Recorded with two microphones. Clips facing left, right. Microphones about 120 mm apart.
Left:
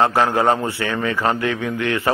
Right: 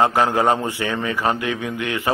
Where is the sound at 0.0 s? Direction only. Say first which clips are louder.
Left 1 dB; 15° right (ahead or behind).